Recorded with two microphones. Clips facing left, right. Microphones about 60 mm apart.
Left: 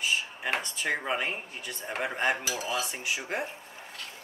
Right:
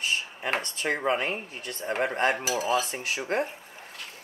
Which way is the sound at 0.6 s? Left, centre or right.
Right.